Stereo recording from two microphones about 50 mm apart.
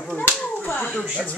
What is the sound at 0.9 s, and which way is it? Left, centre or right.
Speech, centre.